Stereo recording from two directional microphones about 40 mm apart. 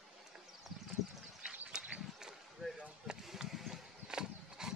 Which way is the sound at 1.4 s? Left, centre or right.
Right.